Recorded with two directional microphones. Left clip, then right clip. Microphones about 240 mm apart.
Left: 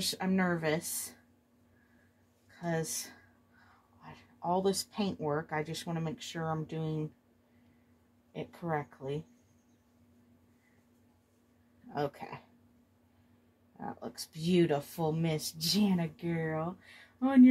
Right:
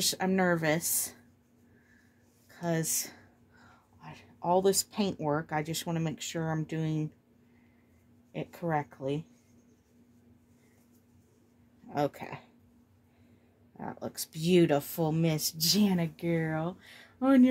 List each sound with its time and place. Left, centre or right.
0.0 s speech: right
2.6 s speech: right
8.3 s speech: right
11.9 s speech: right
13.7 s speech: right